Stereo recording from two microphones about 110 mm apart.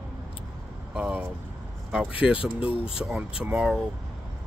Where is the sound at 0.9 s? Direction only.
10° right (ahead or behind).